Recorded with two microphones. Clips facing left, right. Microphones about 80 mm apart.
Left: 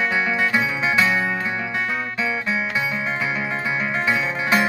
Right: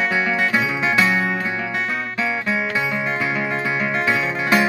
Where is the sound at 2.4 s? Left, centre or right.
Right.